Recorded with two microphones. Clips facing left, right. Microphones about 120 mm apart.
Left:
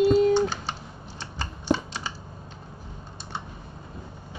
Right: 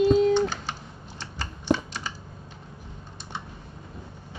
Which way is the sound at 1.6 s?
30° left (ahead or behind).